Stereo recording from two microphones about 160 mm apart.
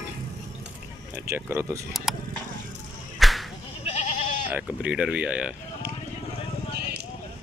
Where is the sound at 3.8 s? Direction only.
45° left (ahead or behind).